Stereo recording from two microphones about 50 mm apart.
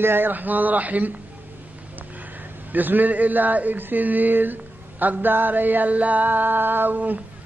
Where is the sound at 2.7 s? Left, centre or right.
Right.